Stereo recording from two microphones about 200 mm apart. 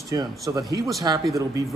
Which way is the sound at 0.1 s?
20° right (ahead or behind).